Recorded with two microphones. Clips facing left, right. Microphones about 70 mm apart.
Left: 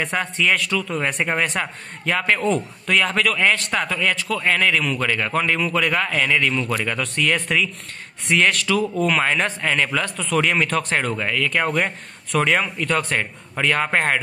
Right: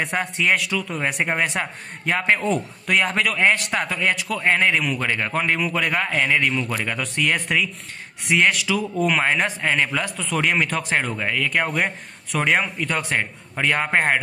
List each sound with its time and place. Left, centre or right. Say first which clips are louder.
0.0 s speech: left 1 dB; centre